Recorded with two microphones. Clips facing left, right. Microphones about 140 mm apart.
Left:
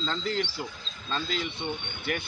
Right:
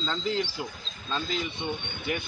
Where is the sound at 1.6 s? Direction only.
10° right (ahead or behind).